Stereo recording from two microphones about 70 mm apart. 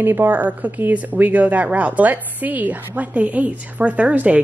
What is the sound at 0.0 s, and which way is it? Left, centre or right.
Speech, right.